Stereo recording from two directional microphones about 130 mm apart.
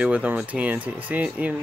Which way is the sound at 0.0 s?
10° right (ahead or behind).